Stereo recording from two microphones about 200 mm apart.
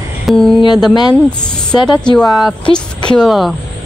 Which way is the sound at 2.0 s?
Centre (ahead or behind).